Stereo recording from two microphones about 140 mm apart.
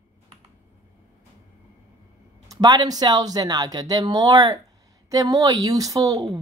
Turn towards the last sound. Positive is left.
turn(degrees=-25)  # may be behind; listen again after turning